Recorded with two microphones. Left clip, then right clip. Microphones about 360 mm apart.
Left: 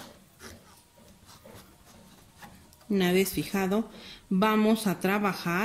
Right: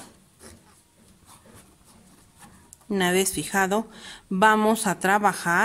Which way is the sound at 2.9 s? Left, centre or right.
Right.